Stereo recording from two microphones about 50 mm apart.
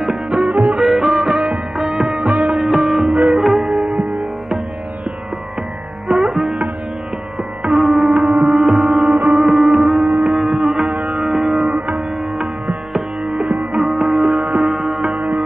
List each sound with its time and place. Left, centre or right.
0.0 s music: centre
0.5 s music: right
0.7 s music: centre
2.0 s music: centre
2.6 s music: centre
3.1 s music: right
3.3 s sitar: centre
6.0 s music: centre
7.7 s music: centre
14.6 s sitar: centre
15.1 s music: right